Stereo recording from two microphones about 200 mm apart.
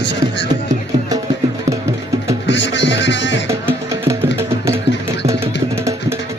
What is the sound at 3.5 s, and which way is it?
Music, 15° right (ahead or behind).